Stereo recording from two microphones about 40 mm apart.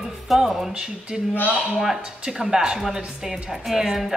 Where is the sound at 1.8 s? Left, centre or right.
Centre.